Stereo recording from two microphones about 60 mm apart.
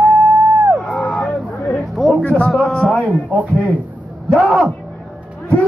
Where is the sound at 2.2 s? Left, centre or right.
Left.